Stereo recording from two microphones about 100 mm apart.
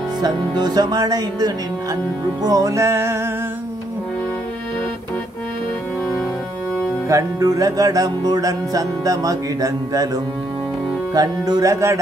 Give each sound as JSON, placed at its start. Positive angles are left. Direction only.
{"t": 0.2, "sound": "speech", "side_deg": -45}
{"t": 2.4, "sound": "music", "side_deg": -35}
{"t": 7.1, "sound": "music", "side_deg": -35}